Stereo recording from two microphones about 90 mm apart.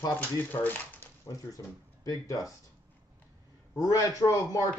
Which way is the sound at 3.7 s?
35° left (ahead or behind).